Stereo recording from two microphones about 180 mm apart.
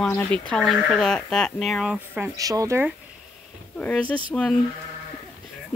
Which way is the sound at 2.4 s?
20° right (ahead or behind).